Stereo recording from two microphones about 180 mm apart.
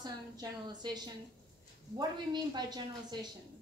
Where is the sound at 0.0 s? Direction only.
20° right (ahead or behind).